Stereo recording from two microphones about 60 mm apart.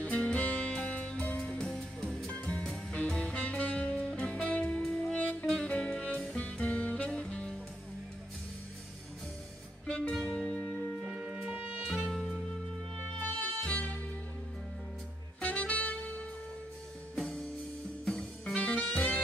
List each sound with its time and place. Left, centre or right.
0.0 s music: left
7.1 s music: centre
9.9 s music: centre
10.7 s music: centre
12.1 s music: centre
13.2 s music: left
15.4 s saxophone: left
18.0 s music: centre
18.5 s saxophone: centre